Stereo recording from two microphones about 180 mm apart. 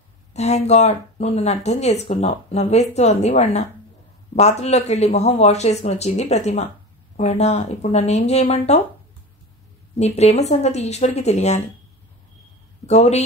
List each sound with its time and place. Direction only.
0.3 s speech: 40° left (ahead or behind)
9.9 s speech: 35° left (ahead or behind)
12.8 s speech: 35° left (ahead or behind)